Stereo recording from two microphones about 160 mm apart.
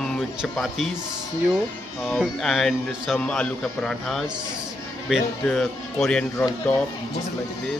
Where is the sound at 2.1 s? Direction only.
Centre (ahead or behind).